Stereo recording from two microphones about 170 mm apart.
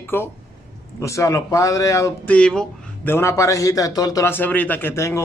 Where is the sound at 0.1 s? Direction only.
15° left (ahead or behind).